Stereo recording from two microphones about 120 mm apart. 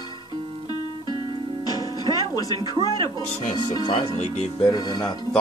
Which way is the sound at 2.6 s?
35° left (ahead or behind).